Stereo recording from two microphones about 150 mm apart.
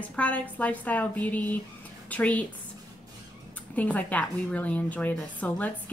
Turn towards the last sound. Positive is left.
turn(degrees=10)  # may be behind; listen again after turning